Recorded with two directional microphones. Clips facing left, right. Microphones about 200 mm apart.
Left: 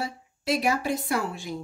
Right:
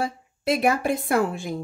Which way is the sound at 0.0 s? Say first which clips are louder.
Right 5 dB; 55° right (ahead or behind).